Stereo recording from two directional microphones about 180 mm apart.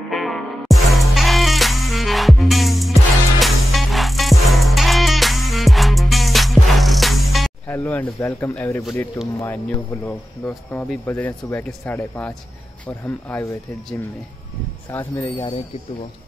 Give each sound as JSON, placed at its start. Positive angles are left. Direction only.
{"t": 0.1, "sound": "music", "side_deg": 0}
{"t": 7.6, "sound": "speech", "side_deg": 10}
{"t": 14.9, "sound": "speech", "side_deg": 15}